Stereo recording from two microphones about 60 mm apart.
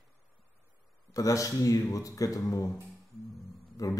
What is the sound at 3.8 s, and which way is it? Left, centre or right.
Speech, left.